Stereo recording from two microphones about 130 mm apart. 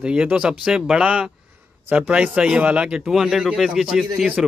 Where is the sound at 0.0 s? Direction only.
5° right (ahead or behind).